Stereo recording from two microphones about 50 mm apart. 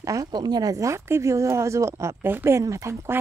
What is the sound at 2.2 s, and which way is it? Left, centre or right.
Speech, right.